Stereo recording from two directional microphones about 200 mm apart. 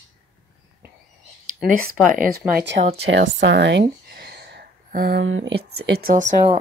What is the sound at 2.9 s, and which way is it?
Speech, 70° right (ahead or behind).